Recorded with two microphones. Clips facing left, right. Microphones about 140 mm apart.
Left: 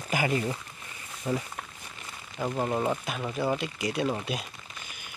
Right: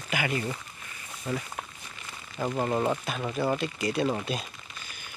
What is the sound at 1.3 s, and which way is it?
Speech, 15° left (ahead or behind).